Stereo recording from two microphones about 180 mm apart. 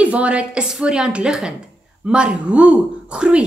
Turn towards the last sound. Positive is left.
turn(degrees=-5)  # may be behind; listen again after turning